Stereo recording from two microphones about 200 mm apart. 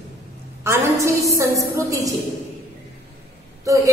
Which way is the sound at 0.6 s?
15° right (ahead or behind).